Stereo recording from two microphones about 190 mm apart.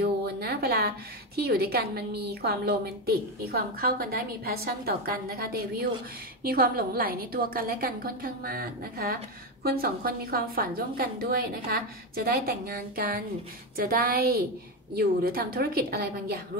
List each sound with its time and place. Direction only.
0.0 s a woman's voice: 55° right (ahead or behind)